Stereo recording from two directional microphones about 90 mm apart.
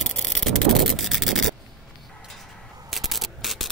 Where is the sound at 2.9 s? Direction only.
Centre (ahead or behind).